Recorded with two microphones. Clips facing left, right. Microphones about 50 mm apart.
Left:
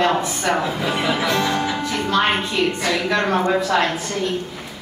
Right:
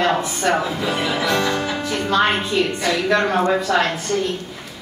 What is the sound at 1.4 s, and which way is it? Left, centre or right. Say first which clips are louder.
Music: even; centre.